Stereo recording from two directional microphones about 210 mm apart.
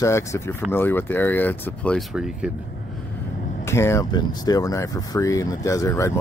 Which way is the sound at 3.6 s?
10° left (ahead or behind).